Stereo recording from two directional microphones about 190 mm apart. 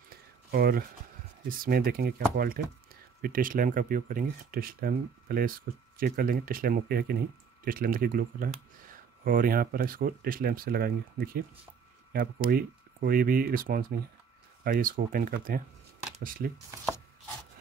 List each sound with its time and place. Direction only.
0.5 s speech: 50° right (ahead or behind)